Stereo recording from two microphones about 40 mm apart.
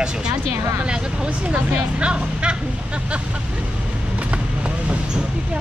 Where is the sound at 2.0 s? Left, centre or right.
Right.